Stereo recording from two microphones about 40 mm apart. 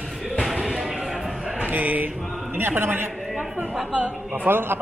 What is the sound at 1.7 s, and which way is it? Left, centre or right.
Chant, right.